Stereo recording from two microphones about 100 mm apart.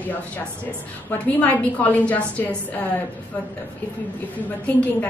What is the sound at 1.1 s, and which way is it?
A woman's voice, 15° left (ahead or behind).